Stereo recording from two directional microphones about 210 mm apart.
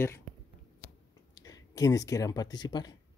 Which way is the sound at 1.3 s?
15° left (ahead or behind).